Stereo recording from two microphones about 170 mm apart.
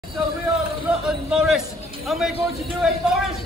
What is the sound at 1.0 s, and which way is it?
A man's voice, 5° right (ahead or behind).